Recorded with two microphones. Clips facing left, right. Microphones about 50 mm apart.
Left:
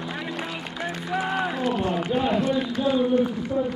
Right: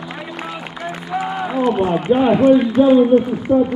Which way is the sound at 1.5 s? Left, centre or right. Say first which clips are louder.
Right 8 dB; right.